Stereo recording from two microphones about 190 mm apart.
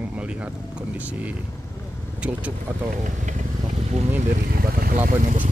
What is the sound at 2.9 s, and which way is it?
Speech, 40° right (ahead or behind).